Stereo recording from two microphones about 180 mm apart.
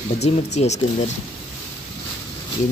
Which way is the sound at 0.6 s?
40° left (ahead or behind).